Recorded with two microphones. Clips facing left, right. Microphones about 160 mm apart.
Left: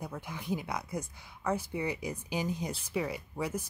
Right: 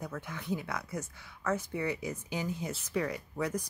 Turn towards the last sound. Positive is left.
turn(degrees=10)  # may be behind; listen again after turning